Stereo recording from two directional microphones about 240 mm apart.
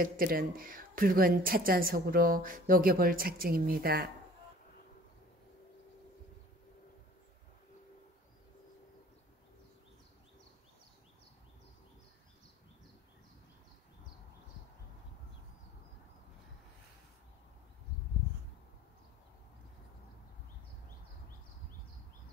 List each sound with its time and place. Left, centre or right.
0.0 s a woman's voice: right